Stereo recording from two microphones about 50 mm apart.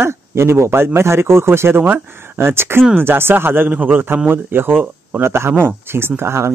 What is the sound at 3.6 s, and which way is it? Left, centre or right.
Speech, right.